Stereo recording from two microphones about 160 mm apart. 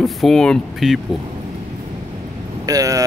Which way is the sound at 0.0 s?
Centre (ahead or behind).